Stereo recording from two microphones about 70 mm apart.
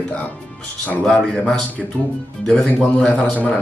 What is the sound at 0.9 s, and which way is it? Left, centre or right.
A man's voice, centre.